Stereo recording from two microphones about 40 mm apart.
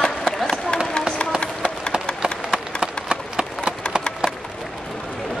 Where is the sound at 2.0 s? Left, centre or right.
Centre.